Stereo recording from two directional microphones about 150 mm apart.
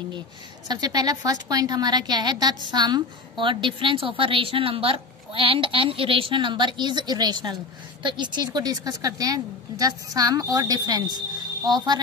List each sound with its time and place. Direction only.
0.7 s a woman's voice: 25° right (ahead or behind)